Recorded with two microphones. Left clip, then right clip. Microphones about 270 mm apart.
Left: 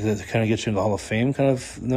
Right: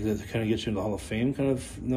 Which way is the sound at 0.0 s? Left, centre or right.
Left.